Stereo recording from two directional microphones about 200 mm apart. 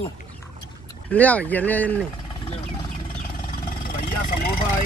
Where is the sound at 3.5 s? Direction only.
45° left (ahead or behind).